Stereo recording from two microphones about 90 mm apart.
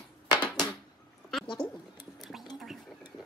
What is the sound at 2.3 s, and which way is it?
Whispering, centre (ahead or behind).